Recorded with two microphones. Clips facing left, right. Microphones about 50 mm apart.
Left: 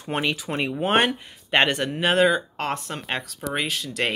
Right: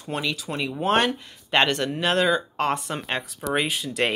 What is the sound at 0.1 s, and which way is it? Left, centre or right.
Speech, left.